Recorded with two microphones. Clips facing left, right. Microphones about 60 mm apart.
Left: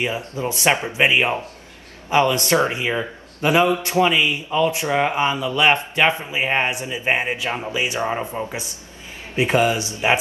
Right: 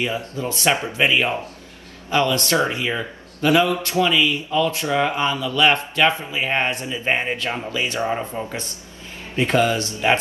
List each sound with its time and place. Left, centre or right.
0.0 s a man's voice: left